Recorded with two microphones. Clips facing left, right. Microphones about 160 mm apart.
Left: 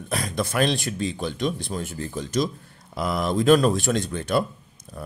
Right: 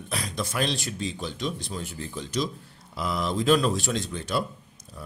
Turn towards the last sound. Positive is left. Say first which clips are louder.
# left 5 dB
turn(degrees=55)  # may be behind; listen again after turning